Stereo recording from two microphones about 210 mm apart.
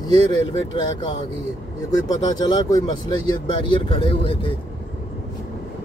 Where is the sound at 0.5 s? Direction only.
20° left (ahead or behind).